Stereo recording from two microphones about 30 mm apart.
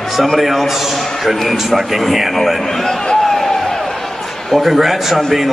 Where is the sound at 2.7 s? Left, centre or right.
Centre.